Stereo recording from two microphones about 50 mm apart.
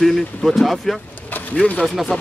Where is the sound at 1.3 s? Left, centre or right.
Left.